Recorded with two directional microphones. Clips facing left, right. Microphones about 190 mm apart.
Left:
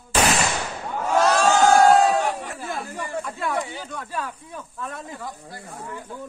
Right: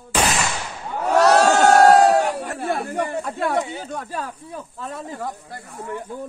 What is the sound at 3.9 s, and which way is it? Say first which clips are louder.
Speech: right 1 dB; 40° right (ahead or behind).